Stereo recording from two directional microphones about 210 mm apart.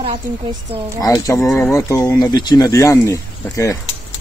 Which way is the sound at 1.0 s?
15° left (ahead or behind).